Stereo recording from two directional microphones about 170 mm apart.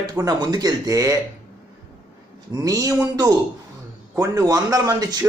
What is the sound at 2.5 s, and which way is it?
A man's voice, 20° right (ahead or behind).